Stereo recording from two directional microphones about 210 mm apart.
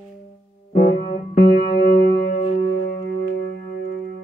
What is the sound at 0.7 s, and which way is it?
Music, 40° left (ahead or behind).